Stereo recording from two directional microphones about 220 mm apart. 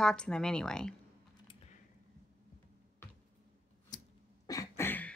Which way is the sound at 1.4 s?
30° left (ahead or behind).